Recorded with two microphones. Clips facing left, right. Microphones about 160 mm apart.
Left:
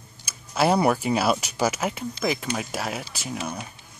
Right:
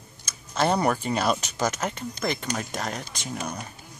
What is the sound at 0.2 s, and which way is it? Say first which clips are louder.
Speech: left 2 dB; 10° left (ahead or behind).